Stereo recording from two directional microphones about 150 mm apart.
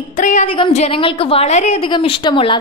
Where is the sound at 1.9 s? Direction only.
35° left (ahead or behind).